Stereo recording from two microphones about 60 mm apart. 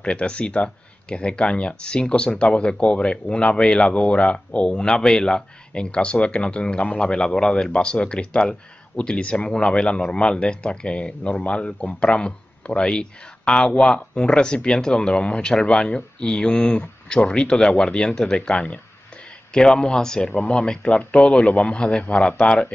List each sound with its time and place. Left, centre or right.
0.0 s speech: centre